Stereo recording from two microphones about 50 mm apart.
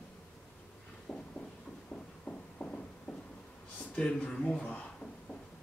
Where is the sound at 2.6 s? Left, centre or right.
Left.